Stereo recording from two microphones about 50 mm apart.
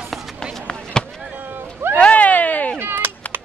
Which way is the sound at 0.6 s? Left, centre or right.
Centre.